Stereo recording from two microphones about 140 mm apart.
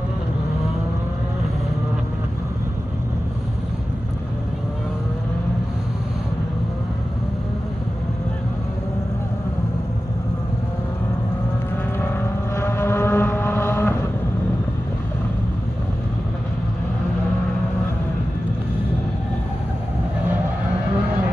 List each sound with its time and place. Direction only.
12.5 s vehicle: 20° left (ahead or behind)